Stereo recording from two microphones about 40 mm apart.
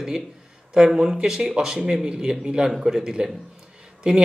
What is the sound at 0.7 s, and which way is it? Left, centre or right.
Speech, centre.